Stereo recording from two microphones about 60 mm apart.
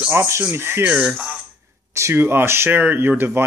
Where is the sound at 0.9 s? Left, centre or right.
Centre.